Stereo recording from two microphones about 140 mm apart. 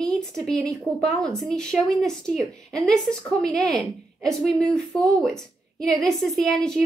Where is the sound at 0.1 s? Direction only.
Centre (ahead or behind).